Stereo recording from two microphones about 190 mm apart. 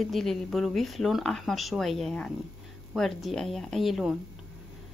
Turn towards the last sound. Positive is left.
turn(degrees=0)  # may be behind; listen again after turning